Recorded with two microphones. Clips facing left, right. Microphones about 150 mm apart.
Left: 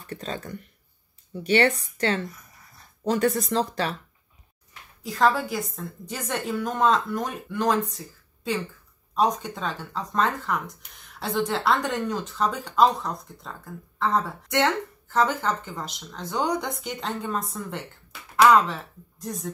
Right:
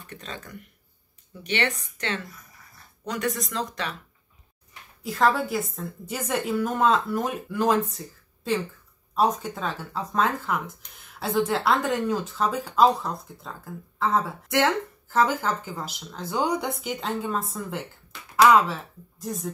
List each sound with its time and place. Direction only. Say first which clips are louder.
0.1 s speech: left 6 dB; 35° left (ahead or behind)
5.0 s speech: even; centre (ahead or behind)